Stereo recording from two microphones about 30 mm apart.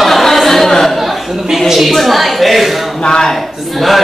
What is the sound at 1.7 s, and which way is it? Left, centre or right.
A woman's voice, centre.